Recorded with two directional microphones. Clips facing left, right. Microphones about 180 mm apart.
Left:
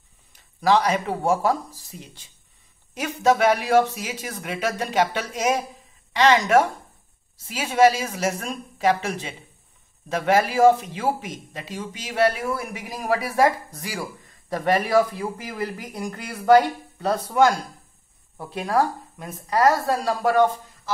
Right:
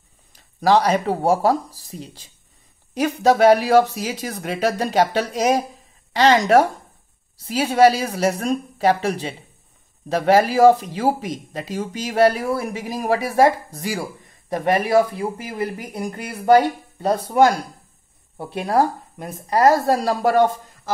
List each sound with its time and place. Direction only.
0.3 s speech: 35° right (ahead or behind)
18.4 s speech: 30° right (ahead or behind)